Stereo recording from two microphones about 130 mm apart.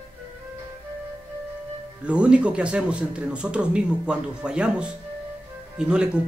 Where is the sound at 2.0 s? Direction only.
10° right (ahead or behind).